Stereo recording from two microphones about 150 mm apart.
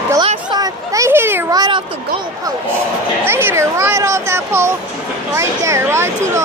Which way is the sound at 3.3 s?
15° right (ahead or behind).